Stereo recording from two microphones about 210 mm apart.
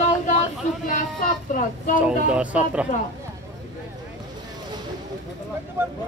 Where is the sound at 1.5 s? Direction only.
40° left (ahead or behind).